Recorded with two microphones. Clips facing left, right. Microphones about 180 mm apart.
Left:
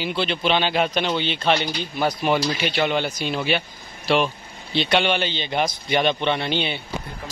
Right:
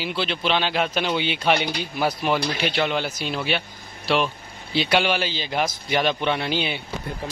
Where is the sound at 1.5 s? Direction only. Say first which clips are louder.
Even; 60° right (ahead or behind).